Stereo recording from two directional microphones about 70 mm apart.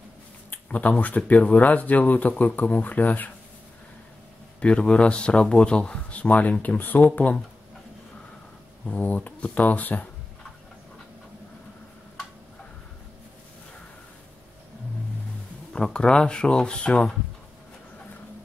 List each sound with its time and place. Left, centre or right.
0.5 s speech: left
4.6 s speech: centre
8.8 s speech: left
15.7 s speech: centre